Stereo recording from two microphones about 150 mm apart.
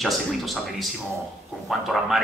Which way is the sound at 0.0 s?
Centre (ahead or behind).